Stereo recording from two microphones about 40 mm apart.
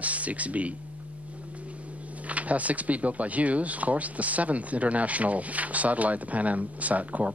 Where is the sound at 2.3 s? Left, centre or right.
Right.